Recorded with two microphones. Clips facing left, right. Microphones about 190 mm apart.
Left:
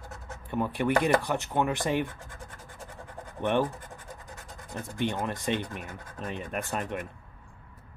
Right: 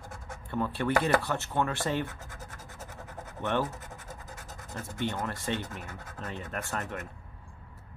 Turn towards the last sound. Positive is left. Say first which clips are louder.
# left 3 dB
turn(degrees=15)  # may be behind; listen again after turning